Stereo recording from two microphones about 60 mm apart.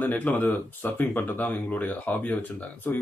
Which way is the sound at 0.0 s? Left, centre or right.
Left.